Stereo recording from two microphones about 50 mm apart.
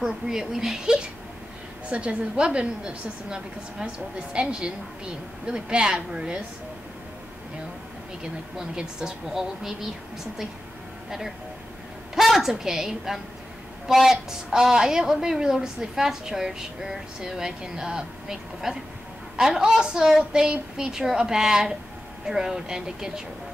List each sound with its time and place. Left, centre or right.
0.0 s a woman's voice: centre
1.9 s a woman's voice: right
8.2 s a woman's voice: centre
11.1 s a woman's voice: centre